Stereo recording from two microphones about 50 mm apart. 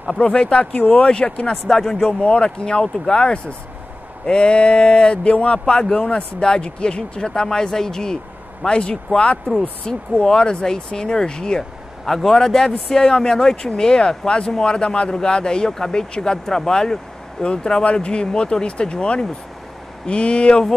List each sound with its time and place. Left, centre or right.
0.2 s speech: left
1.5 s speech: centre
2.1 s speech: left